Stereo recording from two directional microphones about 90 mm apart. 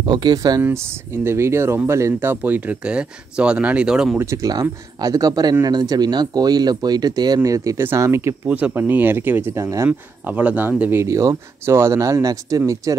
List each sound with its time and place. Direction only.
0.0 s speech: 55° right (ahead or behind)
0.6 s speech: 25° right (ahead or behind)
2.1 s speech: 20° right (ahead or behind)
4.2 s speech: 35° right (ahead or behind)
8.5 s speech: 15° right (ahead or behind)
9.5 s speech: 35° right (ahead or behind)
9.8 s speech: 15° right (ahead or behind); by 12.9 s 40° right (ahead or behind)